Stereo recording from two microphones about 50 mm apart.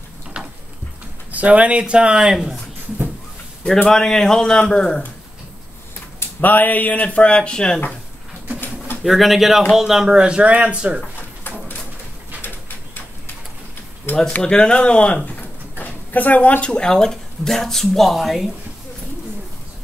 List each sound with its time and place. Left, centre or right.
1.3 s speech: right
2.1 s speech: centre
3.9 s a man's voice: centre
6.4 s speech: left; by 7.8 s centre
9.0 s speech: centre; by 11.0 s right
12.4 s bird: left
14.1 s a sound: left
14.4 s speech: centre
15.8 s speech: left; by 18.5 s centre